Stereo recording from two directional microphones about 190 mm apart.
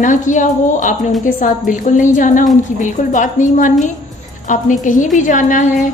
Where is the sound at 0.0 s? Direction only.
40° left (ahead or behind).